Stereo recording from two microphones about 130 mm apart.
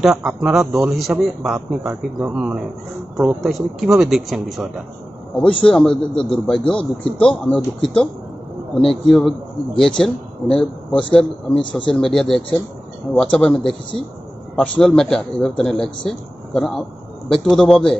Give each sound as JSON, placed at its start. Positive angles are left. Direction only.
{"t": 0.0, "sound": "speech", "side_deg": -5}
{"t": 1.9, "sound": "speech", "side_deg": -20}
{"t": 2.3, "sound": "a man's voice", "side_deg": -10}